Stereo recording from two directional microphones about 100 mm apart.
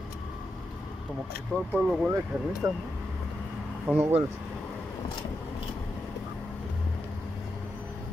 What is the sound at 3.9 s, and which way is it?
Speech, 20° right (ahead or behind).